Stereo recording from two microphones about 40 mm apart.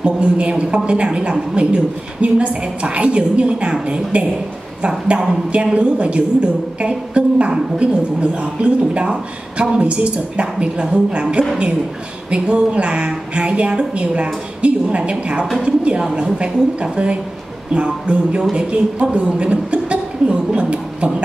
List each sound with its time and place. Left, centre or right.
0.0 s a woman's voice: right